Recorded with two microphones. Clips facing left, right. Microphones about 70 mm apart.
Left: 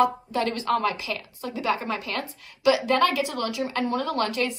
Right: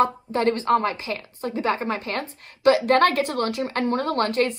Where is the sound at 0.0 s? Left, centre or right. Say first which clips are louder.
Right 2 dB; right.